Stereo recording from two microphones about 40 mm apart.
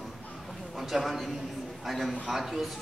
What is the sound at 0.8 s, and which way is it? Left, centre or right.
A man's voice, centre.